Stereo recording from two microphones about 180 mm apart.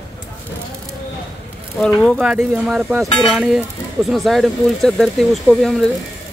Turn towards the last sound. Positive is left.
turn(degrees=0)  # may be behind; listen again after turning